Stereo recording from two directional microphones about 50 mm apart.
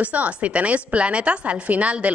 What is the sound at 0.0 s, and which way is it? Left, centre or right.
A woman's voice, right.